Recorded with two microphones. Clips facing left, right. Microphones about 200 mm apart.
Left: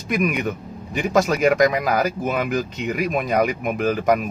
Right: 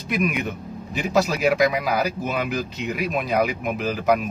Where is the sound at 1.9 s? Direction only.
50° left (ahead or behind).